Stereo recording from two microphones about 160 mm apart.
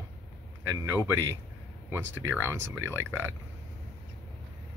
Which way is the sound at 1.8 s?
15° right (ahead or behind).